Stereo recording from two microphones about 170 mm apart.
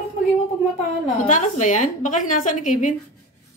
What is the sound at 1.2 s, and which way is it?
A woman's voice, 45° left (ahead or behind).